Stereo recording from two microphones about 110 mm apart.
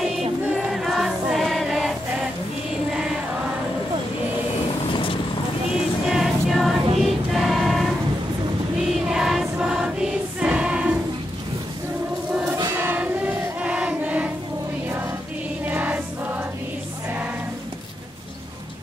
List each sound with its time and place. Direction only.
0.7 s choir: centre (ahead or behind)
6.0 s music: centre (ahead or behind)
7.0 s choir: centre (ahead or behind)
9.0 s choir: 5° right (ahead or behind)
12.7 s choir: 15° right (ahead or behind)
15.6 s music: 15° right (ahead or behind)